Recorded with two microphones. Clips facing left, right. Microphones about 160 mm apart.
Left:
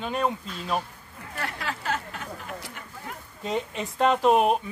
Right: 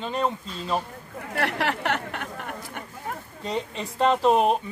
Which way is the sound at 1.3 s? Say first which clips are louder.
Right 7 dB; 70° right (ahead or behind).